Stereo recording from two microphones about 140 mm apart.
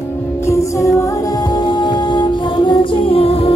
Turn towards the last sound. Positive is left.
turn(degrees=40)  # may be behind; listen again after turning